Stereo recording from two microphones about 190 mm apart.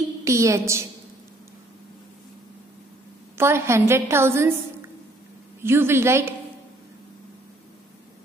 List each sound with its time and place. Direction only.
0.2 s a woman's voice: 15° right (ahead or behind)
3.3 s a woman's voice: 15° right (ahead or behind)
5.6 s a woman's voice: 10° right (ahead or behind)